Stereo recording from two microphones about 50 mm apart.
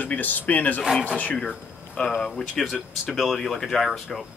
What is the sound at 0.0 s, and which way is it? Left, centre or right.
Speech, left.